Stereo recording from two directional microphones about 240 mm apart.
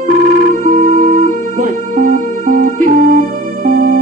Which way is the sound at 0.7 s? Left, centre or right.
Right.